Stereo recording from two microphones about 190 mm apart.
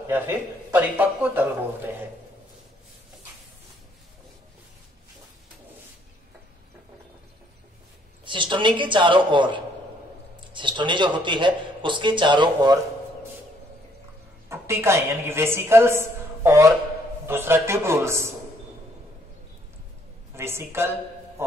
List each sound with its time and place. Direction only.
0.0 s a woman's voice: 15° right (ahead or behind)
8.3 s a man's voice: 25° right (ahead or behind)
14.5 s a woman's voice: 15° right (ahead or behind)
20.3 s a woman's voice: 15° right (ahead or behind)